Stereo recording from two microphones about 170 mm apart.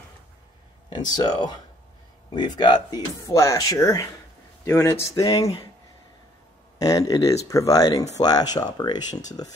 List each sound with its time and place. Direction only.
0.9 s speech: 25° left (ahead or behind)
6.8 s speech: 20° left (ahead or behind)